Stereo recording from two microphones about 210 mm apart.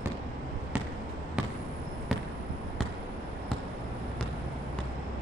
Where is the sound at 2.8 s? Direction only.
Centre (ahead or behind).